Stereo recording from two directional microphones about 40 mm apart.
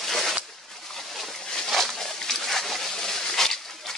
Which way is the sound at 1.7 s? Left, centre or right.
Centre.